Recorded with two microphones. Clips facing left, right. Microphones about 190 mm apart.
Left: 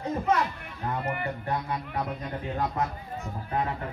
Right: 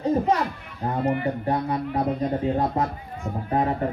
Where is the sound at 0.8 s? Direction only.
35° right (ahead or behind).